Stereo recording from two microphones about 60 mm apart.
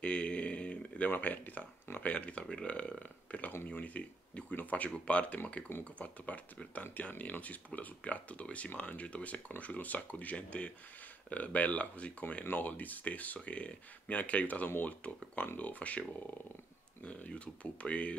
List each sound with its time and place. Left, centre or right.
0.0 s a sound: centre
2.0 s speech: centre
17.0 s speech: left